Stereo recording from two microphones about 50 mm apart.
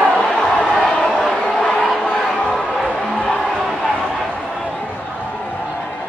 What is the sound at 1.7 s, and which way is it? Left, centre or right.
Crowd, centre.